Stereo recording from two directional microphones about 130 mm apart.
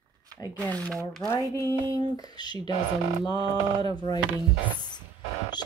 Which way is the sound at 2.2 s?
35° left (ahead or behind).